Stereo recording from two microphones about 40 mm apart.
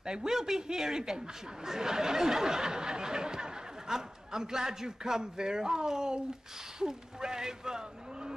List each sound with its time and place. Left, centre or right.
0.0 s a man's voice: centre